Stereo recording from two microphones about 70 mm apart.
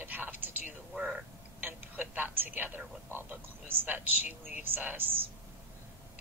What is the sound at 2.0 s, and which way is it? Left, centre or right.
A woman's voice, right.